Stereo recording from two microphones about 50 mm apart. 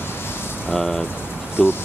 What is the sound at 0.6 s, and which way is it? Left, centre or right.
Speech, left.